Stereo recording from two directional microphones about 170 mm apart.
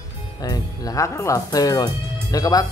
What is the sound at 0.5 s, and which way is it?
Speech, 20° left (ahead or behind).